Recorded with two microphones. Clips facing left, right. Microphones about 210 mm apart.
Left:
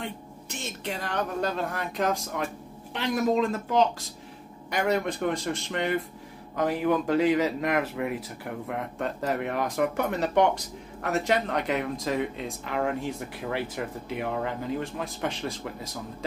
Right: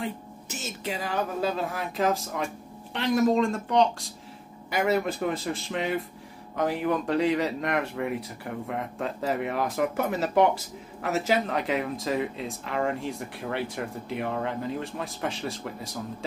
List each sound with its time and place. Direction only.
0.0 s speech: 5° right (ahead or behind)